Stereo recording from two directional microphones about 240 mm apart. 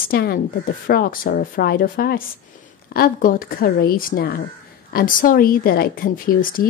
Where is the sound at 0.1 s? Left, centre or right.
Left.